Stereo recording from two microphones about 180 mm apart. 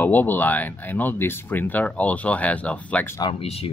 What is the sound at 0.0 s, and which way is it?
Speech, 10° left (ahead or behind).